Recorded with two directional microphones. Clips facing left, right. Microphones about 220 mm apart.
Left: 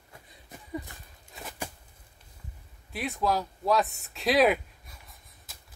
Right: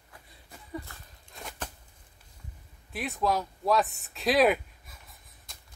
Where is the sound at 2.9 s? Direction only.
Centre (ahead or behind).